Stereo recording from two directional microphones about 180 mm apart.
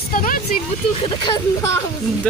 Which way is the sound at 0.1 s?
50° left (ahead or behind).